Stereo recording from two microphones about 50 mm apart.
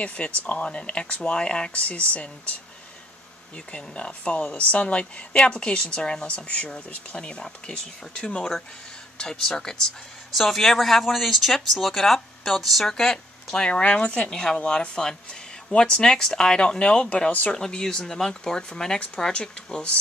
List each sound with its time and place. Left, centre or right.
0.0 s a woman's voice: left
3.5 s a woman's voice: left; by 12.9 s centre
12.9 s speech: centre
13.7 s a woman's voice: left
17.6 s a woman's voice: centre